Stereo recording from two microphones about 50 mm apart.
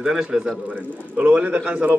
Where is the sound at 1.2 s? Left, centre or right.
Right.